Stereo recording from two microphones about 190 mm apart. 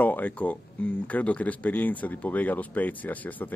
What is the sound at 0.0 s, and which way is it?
Speech, 10° left (ahead or behind).